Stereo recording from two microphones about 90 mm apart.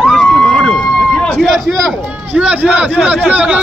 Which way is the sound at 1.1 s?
10° left (ahead or behind).